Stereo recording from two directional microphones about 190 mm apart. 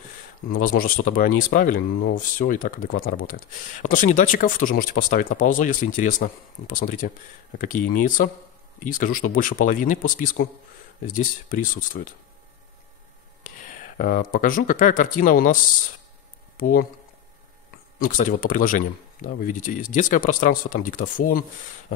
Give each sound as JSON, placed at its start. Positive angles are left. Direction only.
{"t": 0.7, "sound": "speech", "side_deg": 45}
{"t": 13.7, "sound": "speech", "side_deg": 45}
{"t": 17.9, "sound": "speech", "side_deg": 45}